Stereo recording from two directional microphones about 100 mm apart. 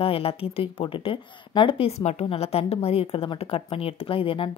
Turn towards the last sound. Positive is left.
turn(degrees=65)  # may be behind; listen again after turning